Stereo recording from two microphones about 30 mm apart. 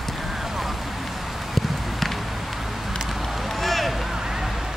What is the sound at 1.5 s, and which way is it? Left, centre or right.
Walk, centre.